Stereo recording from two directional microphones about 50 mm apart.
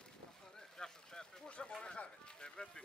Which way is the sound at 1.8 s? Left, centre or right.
Centre.